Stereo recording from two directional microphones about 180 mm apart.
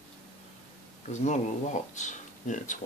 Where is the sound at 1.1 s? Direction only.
40° left (ahead or behind).